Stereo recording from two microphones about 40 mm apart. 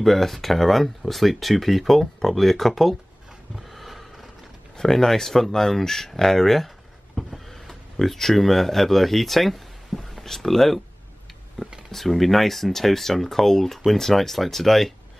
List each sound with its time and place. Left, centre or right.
0.0 s speech: centre
3.7 s a sound: centre
4.7 s speech: centre
11.6 s speech: centre
11.9 s speech: centre